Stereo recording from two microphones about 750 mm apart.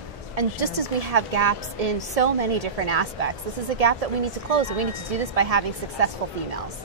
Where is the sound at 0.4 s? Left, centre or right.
Right.